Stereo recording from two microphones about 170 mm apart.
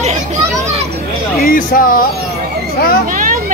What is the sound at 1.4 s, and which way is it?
Speech, 55° left (ahead or behind).